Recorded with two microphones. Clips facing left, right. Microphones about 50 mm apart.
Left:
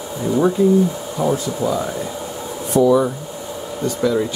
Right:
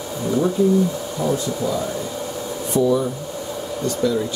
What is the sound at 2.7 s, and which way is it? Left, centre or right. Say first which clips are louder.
Speech: left 4 dB; left.